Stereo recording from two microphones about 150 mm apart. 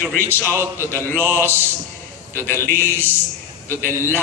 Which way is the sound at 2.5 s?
15° right (ahead or behind).